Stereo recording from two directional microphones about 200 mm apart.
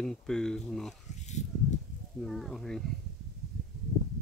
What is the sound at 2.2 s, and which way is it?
Speech, centre (ahead or behind).